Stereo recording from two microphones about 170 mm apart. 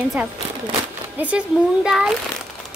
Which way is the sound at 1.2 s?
10° right (ahead or behind).